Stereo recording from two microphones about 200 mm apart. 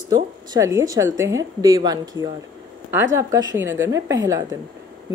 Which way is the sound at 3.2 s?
15° right (ahead or behind).